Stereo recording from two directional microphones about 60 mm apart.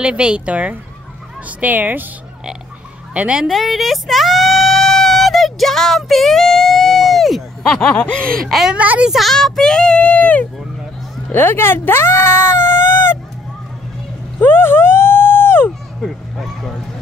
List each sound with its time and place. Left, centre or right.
0.0 s speech: centre
3.2 s speech: centre
3.4 s speech: centre
7.9 s speech: centre
8.4 s a woman's voice: centre
8.7 s speech: right
9.0 s a woman's voice: centre
9.3 s speech: centre; by 10.5 s left
11.3 s speech: left
14.4 s a sound: left
16.0 s speech: centre